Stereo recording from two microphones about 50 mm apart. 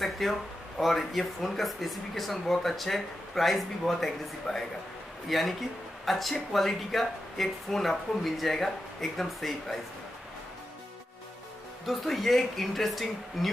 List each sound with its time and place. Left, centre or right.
0.0 s speech: centre
11.8 s speech: centre